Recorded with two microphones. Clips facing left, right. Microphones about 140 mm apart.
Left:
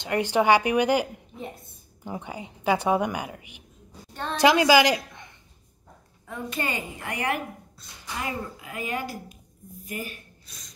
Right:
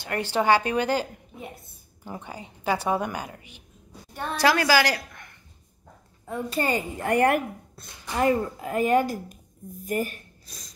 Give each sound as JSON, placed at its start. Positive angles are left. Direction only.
{"t": 0.0, "sound": "a woman's voice", "side_deg": 15}
{"t": 2.0, "sound": "a woman's voice", "side_deg": 15}
{"t": 4.1, "sound": "a sound", "side_deg": -10}
{"t": 4.4, "sound": "a woman's voice", "side_deg": 20}
{"t": 6.2, "sound": "speech", "side_deg": -35}